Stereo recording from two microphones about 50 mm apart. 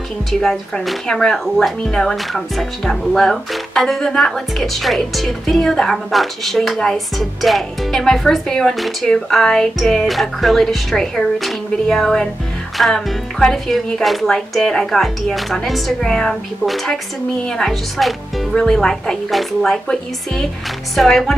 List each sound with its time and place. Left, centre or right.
0.3 s speech: centre
8.7 s speech: centre
9.1 s speech: centre
12.7 s music: centre
13.4 s speech: centre
18.0 s speech: centre
18.5 s speech: centre